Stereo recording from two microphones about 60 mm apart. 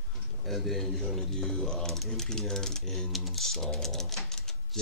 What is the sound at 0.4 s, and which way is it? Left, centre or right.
Speech, centre.